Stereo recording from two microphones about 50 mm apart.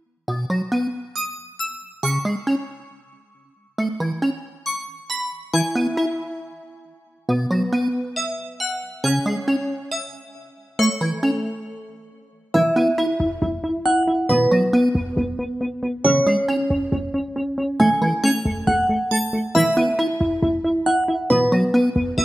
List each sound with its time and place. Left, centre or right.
0.2 s music: centre
3.7 s music: centre
7.2 s music: centre
9.6 s music: centre
10.8 s music: centre
12.5 s music: centre